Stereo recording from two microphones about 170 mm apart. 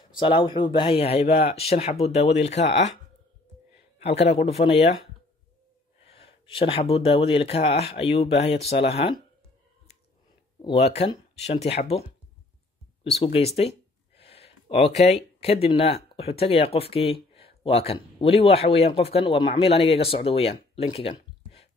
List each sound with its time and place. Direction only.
0.1 s speech: 30° left (ahead or behind)
4.2 s speech: 40° left (ahead or behind)
6.0 s speech: 35° left (ahead or behind)
10.6 s speech: 35° left (ahead or behind)
13.2 s speech: 35° left (ahead or behind)